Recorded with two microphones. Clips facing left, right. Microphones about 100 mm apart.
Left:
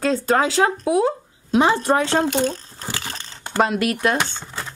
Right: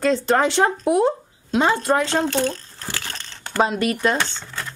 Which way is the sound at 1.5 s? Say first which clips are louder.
Left 1 dB; 20° left (ahead or behind).